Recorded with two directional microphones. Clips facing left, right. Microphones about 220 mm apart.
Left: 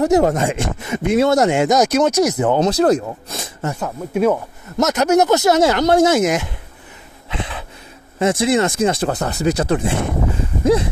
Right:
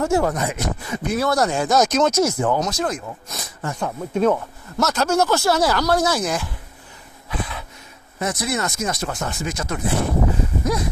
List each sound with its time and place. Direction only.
0.0 s speech: 20° left (ahead or behind)
1.8 s speech: 10° left (ahead or behind)
3.8 s speech: 10° left (ahead or behind)
4.7 s speech: 20° left (ahead or behind)
7.2 s a sound: 25° left (ahead or behind)
8.2 s speech: 25° left (ahead or behind)
10.6 s a sound: 30° left (ahead or behind)